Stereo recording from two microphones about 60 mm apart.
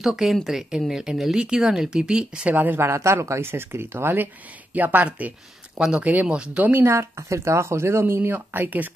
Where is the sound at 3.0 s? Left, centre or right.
Right.